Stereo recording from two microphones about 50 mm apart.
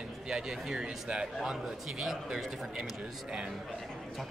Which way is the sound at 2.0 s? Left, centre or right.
Centre.